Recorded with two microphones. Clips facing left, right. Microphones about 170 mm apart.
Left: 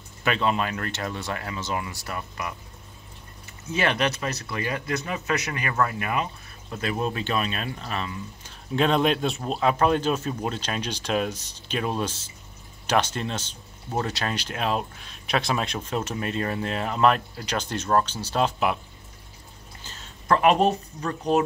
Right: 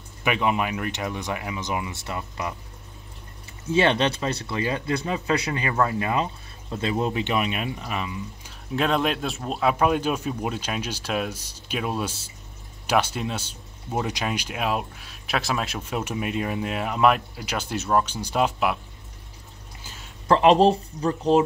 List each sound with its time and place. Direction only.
0.2 s speech: 15° right (ahead or behind)
3.6 s speech: 30° right (ahead or behind); by 18.8 s 5° right (ahead or behind)
19.8 s a sound: 10° right (ahead or behind)
20.2 s speech: 30° right (ahead or behind)